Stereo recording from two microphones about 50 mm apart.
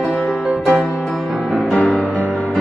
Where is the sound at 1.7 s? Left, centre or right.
Left.